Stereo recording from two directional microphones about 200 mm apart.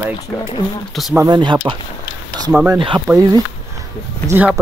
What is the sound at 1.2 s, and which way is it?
Speech, 25° right (ahead or behind).